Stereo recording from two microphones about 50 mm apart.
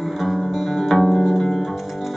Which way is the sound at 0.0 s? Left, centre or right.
Centre.